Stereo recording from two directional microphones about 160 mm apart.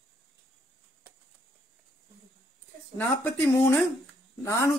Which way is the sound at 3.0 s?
15° left (ahead or behind).